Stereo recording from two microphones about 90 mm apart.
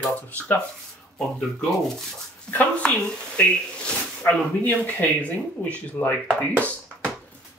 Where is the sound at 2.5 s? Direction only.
15° left (ahead or behind).